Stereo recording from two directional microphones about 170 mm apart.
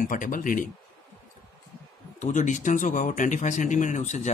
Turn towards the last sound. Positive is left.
turn(degrees=45)  # may be behind; listen again after turning